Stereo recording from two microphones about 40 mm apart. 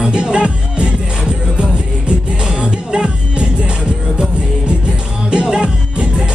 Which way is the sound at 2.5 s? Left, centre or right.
Right.